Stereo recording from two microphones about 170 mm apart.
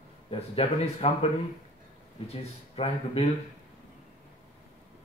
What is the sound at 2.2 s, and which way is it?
Speech, 35° left (ahead or behind).